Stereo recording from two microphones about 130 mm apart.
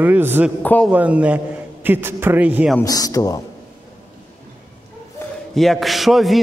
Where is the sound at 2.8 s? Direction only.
30° left (ahead or behind).